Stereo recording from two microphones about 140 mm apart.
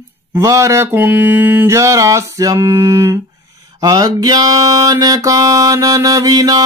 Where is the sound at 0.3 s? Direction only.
20° right (ahead or behind).